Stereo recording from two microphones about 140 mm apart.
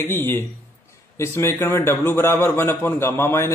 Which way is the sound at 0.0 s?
15° left (ahead or behind).